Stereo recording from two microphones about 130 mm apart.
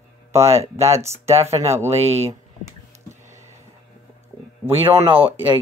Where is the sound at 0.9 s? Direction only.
20° right (ahead or behind).